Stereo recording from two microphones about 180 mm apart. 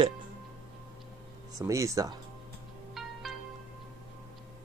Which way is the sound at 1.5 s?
15° right (ahead or behind).